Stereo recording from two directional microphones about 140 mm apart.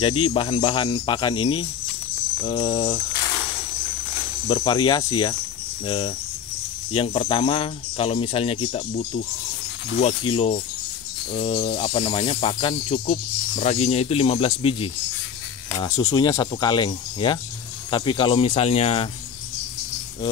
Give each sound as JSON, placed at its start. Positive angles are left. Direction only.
{"t": 0.0, "sound": "speech", "side_deg": 40}
{"t": 4.5, "sound": "speech", "side_deg": 35}
{"t": 13.0, "sound": "speech", "side_deg": 60}
{"t": 15.8, "sound": "speech", "side_deg": 25}